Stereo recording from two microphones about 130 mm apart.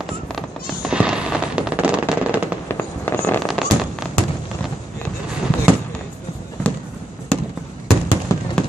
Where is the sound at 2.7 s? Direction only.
15° left (ahead or behind).